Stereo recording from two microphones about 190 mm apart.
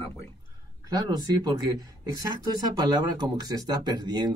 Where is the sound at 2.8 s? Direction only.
20° right (ahead or behind).